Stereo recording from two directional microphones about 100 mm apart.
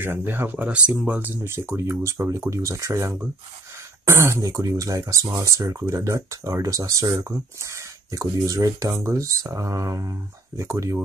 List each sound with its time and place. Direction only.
0.0 s speech: 20° right (ahead or behind)